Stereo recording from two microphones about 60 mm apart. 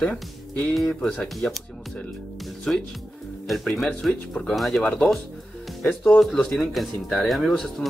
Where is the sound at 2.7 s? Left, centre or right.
Centre.